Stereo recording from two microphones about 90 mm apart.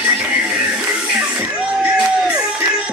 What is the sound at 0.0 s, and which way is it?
Music, 10° right (ahead or behind).